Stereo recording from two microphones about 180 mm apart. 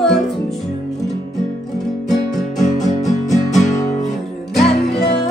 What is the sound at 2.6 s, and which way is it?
Music, 40° left (ahead or behind).